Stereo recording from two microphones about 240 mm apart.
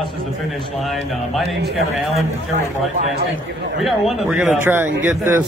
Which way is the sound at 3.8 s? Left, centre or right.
Centre.